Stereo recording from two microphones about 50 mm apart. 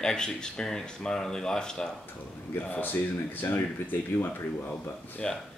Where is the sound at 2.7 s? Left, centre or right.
Left.